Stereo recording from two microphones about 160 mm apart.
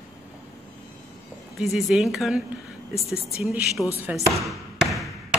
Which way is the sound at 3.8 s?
10° left (ahead or behind).